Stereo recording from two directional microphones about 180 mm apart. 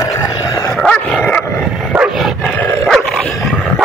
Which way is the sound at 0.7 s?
5° left (ahead or behind).